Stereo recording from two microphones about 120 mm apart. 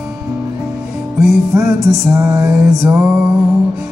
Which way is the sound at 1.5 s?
30° right (ahead or behind).